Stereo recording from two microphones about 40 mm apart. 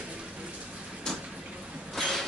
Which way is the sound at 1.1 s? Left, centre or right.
Centre.